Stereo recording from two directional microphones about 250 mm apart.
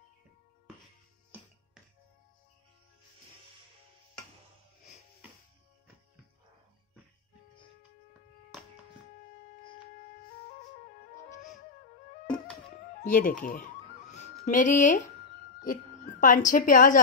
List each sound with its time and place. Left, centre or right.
13.0 s a woman's voice: left